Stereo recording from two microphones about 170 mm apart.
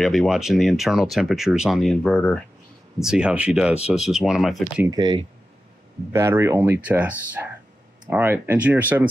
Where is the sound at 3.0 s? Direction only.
5° right (ahead or behind).